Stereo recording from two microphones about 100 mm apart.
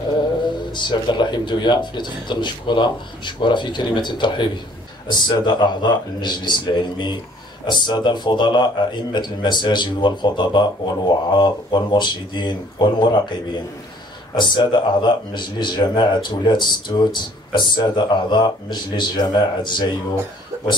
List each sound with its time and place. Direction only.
0.7 s a man's voice: 50° left (ahead or behind)
14.3 s a man's voice: 50° left (ahead or behind)
20.5 s speech: 25° right (ahead or behind)